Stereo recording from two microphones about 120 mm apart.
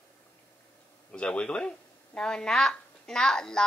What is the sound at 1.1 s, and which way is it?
A woman's voice, 10° left (ahead or behind).